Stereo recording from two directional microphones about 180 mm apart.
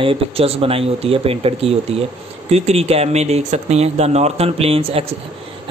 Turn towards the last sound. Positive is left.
turn(degrees=-35)  # may be behind; listen again after turning